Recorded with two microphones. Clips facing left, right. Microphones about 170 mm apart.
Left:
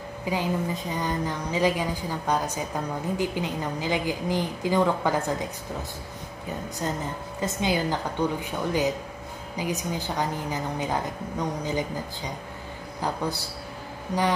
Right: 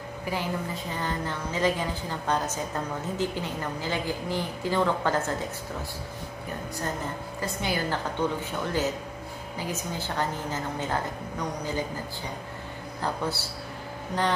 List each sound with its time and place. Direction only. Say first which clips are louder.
0.3 s a woman's voice: left 4 dB; 15° left (ahead or behind)
7.3 s a woman's voice: left 5 dB; 20° left (ahead or behind)
13.0 s a woman's voice: left 1 dB; 15° left (ahead or behind)